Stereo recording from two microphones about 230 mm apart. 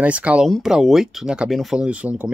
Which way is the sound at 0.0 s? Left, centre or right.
Centre.